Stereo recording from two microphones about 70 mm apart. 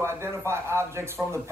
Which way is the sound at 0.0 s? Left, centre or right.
Right.